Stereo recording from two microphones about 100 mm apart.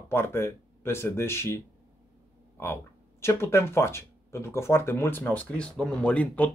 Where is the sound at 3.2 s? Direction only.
25° left (ahead or behind).